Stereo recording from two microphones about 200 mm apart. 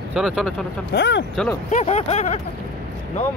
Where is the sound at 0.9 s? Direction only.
60° left (ahead or behind).